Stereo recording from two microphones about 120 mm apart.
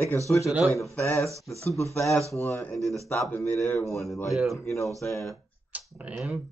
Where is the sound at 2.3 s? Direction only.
25° left (ahead or behind).